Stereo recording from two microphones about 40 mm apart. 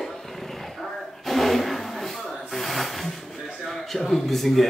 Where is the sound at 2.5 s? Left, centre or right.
Centre.